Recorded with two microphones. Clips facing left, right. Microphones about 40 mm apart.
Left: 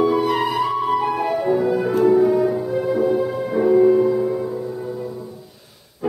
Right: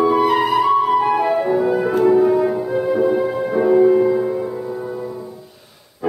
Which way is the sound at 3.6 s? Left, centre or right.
Centre.